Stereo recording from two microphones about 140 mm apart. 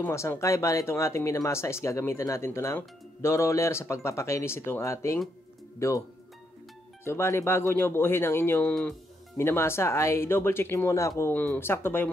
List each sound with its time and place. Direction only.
0.0 s speech: 15° left (ahead or behind)
7.1 s speech: 20° left (ahead or behind)